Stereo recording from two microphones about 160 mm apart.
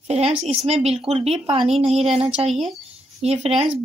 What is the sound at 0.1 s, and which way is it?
A woman's voice, 40° right (ahead or behind).